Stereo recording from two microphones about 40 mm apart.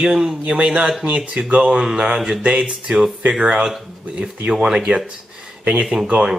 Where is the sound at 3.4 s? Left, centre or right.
Right.